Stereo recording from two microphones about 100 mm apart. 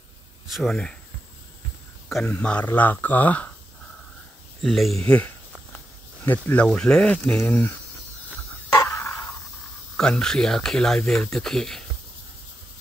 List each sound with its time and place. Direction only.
0.5 s speech: centre (ahead or behind)
2.0 s a sound: centre (ahead or behind)
2.3 s speech: 15° left (ahead or behind)
4.6 s speech: centre (ahead or behind)
6.2 s speech: 20° left (ahead or behind)
8.7 s a sound: 25° left (ahead or behind)
9.9 s speech: 5° left (ahead or behind)